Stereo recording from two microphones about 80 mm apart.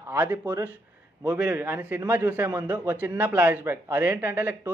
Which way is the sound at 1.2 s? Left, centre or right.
Centre.